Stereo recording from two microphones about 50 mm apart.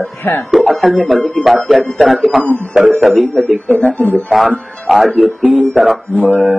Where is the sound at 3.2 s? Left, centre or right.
Left.